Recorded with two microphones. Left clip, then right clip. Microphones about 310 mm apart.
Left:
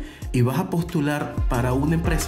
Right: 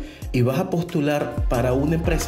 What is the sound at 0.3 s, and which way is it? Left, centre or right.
Speech, centre.